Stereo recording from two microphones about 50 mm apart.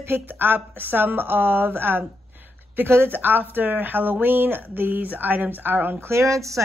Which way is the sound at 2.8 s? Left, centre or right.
Right.